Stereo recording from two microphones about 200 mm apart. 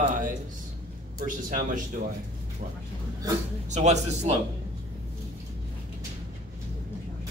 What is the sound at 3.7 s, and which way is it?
Speech, 35° right (ahead or behind).